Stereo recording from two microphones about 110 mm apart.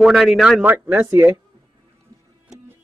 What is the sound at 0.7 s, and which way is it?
Speech, 15° right (ahead or behind).